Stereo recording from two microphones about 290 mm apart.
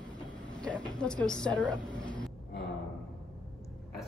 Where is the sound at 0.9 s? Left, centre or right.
Centre.